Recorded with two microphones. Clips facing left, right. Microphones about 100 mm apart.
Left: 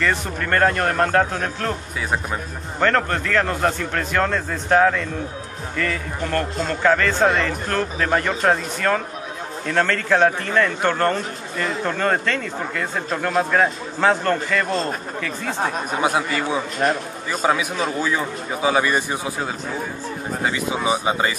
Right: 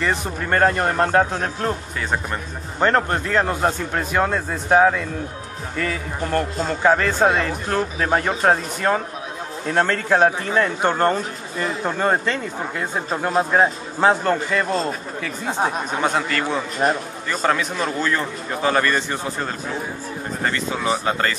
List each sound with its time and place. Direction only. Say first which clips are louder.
0.0 s a man's voice: even; 20° right (ahead or behind)
2.8 s a man's voice: right 1 dB; 20° right (ahead or behind)
16.0 s a man's voice: left 1 dB; 10° left (ahead or behind)